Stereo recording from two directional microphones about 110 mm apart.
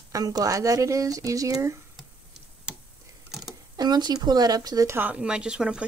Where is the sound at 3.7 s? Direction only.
40° right (ahead or behind).